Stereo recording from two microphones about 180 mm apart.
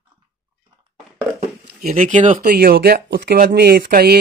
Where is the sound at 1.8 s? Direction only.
45° right (ahead or behind).